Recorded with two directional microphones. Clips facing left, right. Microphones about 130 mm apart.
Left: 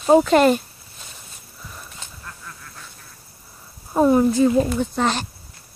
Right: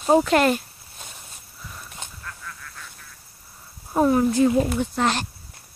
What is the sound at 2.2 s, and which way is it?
Duck, 30° left (ahead or behind).